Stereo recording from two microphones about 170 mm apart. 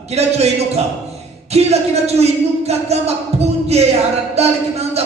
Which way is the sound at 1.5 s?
40° right (ahead or behind).